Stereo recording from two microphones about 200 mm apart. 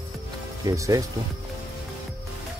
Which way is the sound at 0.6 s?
15° right (ahead or behind).